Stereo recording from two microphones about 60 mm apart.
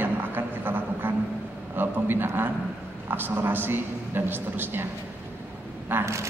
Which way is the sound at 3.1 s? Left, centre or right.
Right.